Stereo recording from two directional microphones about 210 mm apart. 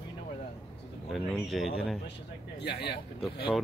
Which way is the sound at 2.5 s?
55° left (ahead or behind).